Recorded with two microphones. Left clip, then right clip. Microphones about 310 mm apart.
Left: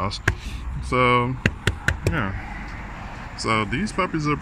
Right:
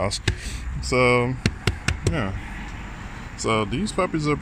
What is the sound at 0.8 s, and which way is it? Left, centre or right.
Speech, centre.